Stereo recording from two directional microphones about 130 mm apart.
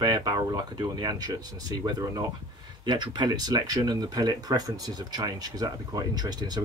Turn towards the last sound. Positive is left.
turn(degrees=-30)  # may be behind; listen again after turning